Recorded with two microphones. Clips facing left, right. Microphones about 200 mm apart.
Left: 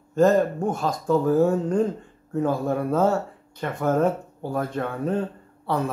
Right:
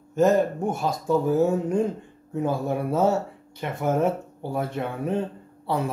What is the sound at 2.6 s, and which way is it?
Speech, 10° right (ahead or behind).